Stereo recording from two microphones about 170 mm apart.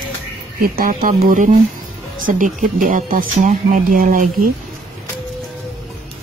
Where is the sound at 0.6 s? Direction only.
60° right (ahead or behind).